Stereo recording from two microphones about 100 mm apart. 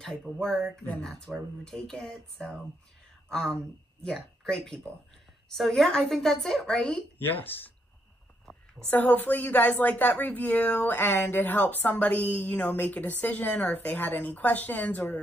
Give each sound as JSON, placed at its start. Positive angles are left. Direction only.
{"t": 0.0, "sound": "a woman's voice", "side_deg": 5}
{"t": 7.2, "sound": "speech", "side_deg": 20}
{"t": 8.9, "sound": "speech", "side_deg": 15}